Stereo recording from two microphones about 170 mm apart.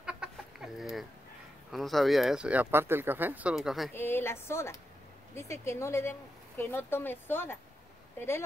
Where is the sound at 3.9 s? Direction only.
15° left (ahead or behind).